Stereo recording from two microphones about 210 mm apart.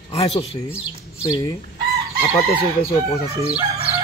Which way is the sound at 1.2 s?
15° left (ahead or behind).